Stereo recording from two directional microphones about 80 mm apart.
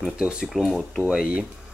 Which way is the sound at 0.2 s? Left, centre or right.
Centre.